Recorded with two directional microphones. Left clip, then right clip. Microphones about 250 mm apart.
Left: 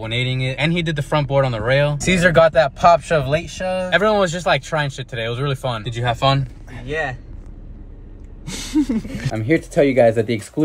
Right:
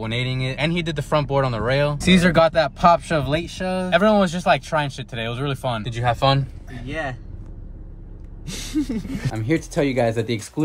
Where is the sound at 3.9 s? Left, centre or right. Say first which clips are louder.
Left 1 dB; centre.